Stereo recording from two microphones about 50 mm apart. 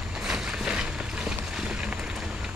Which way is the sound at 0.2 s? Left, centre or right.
Centre.